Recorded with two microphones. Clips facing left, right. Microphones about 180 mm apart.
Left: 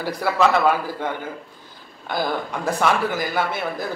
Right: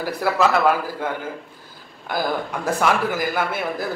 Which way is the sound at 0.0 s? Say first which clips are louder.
Even; 5° right (ahead or behind).